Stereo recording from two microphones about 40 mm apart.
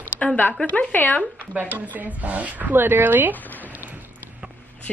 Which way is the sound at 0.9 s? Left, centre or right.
Left.